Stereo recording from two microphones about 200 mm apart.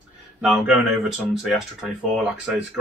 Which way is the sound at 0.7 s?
Centre (ahead or behind).